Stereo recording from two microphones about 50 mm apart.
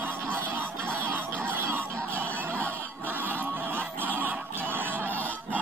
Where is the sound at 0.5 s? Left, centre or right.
Right.